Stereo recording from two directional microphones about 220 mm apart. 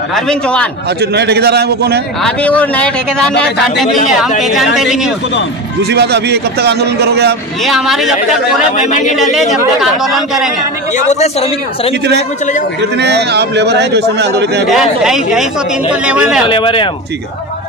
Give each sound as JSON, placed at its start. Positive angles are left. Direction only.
{"t": 0.1, "sound": "speech", "side_deg": 5}
{"t": 1.1, "sound": "a man's voice", "side_deg": -50}
{"t": 2.2, "sound": "speech", "side_deg": 5}
{"t": 5.8, "sound": "a man's voice", "side_deg": -50}
{"t": 7.6, "sound": "speech", "side_deg": 0}
{"t": 8.7, "sound": "speech", "side_deg": 35}
{"t": 9.8, "sound": "speech", "side_deg": 0}
{"t": 11.0, "sound": "speech", "side_deg": 30}
{"t": 12.9, "sound": "a man's voice", "side_deg": -50}
{"t": 14.7, "sound": "speech", "side_deg": 0}
{"t": 16.4, "sound": "speech", "side_deg": 25}